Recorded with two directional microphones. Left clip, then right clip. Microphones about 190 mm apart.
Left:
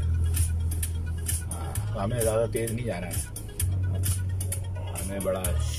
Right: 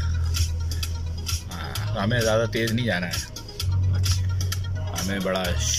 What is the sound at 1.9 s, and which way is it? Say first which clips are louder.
Speech: right 4 dB; 5° left (ahead or behind).